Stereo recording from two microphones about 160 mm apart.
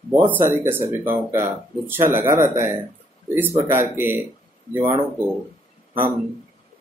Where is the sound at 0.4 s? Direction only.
15° right (ahead or behind).